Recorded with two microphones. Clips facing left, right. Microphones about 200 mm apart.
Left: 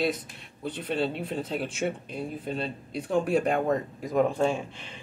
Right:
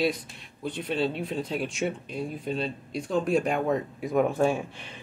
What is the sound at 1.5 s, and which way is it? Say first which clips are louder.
Speech: even; centre (ahead or behind).